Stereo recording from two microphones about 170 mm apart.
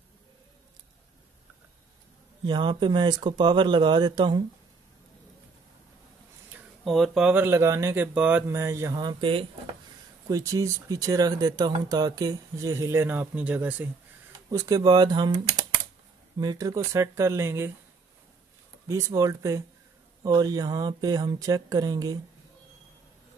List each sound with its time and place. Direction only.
2.4 s speech: 30° right (ahead or behind)
6.8 s speech: centre (ahead or behind); by 9.5 s 30° right (ahead or behind)
10.2 s speech: 20° right (ahead or behind)
18.9 s speech: 20° right (ahead or behind)